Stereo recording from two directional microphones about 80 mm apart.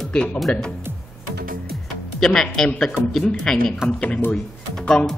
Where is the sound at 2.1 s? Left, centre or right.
Centre.